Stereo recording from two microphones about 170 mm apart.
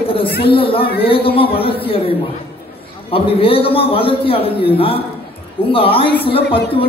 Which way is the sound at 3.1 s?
35° left (ahead or behind).